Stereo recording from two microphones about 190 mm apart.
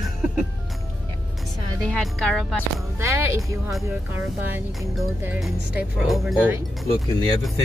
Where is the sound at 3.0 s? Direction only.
15° right (ahead or behind).